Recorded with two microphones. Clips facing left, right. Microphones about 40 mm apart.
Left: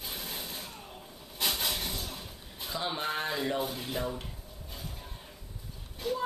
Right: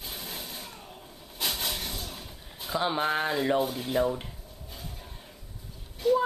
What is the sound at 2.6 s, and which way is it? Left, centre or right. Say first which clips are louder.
Speech: right 6 dB; centre.